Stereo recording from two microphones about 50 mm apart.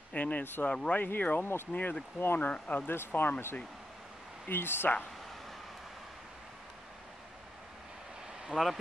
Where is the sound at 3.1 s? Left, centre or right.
Left.